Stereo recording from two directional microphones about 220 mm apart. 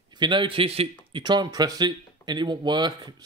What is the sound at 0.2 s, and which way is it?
Speech, 20° right (ahead or behind).